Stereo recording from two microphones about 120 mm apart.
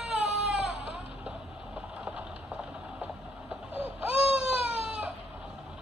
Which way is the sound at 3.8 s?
10° right (ahead or behind).